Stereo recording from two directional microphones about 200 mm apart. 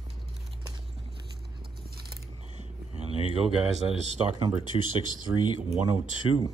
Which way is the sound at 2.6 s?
30° right (ahead or behind).